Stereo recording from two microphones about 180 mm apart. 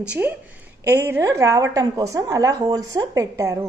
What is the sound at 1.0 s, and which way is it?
A woman's voice, 15° right (ahead or behind).